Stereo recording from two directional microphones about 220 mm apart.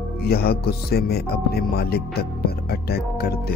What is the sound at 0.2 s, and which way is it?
Speech, 45° left (ahead or behind).